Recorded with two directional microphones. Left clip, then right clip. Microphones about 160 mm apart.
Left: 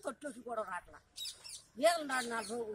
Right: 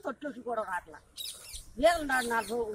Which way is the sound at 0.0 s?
15° left (ahead or behind).